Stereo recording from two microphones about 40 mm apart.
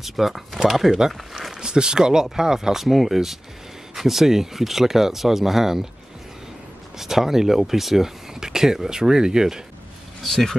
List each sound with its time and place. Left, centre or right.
0.0 s speech: centre
7.0 s speech: centre
10.2 s speech: centre